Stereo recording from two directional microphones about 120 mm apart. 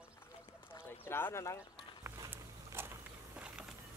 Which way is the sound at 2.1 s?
20° right (ahead or behind).